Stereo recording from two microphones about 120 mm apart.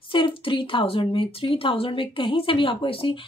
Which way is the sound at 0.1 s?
45° left (ahead or behind).